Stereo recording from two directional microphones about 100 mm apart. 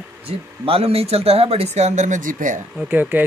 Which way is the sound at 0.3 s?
75° right (ahead or behind).